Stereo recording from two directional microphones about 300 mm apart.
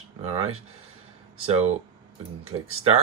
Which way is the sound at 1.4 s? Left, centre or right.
Right.